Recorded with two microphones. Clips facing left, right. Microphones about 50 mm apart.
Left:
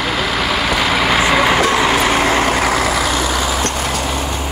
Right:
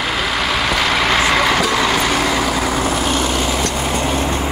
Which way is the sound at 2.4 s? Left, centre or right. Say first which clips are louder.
Left 3 dB; left.